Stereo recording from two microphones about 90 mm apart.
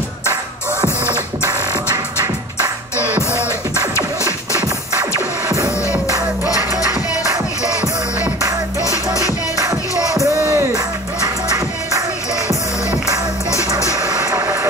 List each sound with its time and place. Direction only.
8.8 s music: 35° left (ahead or behind)
10.2 s music: 35° right (ahead or behind)
13.9 s vehicle: 45° right (ahead or behind)
14.3 s vehicle: 30° right (ahead or behind)